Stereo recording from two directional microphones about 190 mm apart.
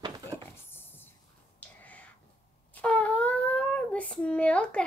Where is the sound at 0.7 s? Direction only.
10° left (ahead or behind).